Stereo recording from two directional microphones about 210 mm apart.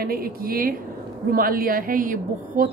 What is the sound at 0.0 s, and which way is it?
A woman's voice, 45° right (ahead or behind).